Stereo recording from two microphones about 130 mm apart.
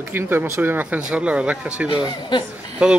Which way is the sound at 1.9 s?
35° left (ahead or behind).